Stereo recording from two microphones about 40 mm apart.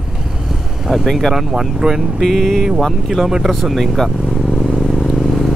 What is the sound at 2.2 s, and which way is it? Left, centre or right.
Speech, centre.